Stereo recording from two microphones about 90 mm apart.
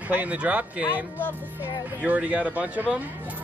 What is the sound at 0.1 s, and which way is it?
Speech, 15° right (ahead or behind).